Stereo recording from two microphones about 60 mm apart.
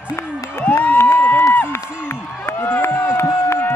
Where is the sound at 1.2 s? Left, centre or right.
Left.